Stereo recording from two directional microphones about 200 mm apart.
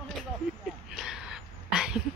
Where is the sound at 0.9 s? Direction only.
Centre (ahead or behind).